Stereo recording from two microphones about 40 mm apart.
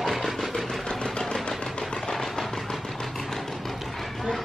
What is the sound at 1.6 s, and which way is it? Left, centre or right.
Vehicle, left.